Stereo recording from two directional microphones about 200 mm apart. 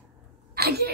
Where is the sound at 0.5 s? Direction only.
50° right (ahead or behind).